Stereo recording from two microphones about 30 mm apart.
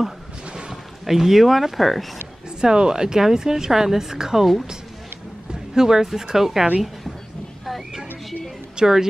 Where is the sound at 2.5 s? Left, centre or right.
Right.